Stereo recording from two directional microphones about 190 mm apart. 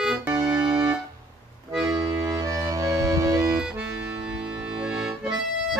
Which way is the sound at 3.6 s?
10° right (ahead or behind).